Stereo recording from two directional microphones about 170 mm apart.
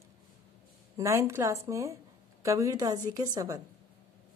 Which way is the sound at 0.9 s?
20° right (ahead or behind).